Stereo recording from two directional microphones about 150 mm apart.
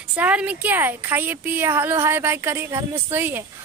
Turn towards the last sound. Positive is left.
turn(degrees=-15)  # may be behind; listen again after turning